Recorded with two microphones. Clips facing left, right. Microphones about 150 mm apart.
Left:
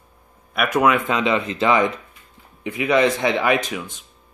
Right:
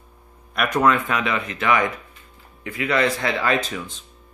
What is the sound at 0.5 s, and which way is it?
Speech, 5° left (ahead or behind).